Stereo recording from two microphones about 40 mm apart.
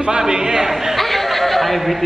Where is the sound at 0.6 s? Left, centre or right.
Centre.